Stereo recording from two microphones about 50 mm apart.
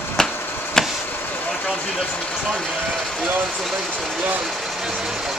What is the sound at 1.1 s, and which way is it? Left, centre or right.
Vehicle, left.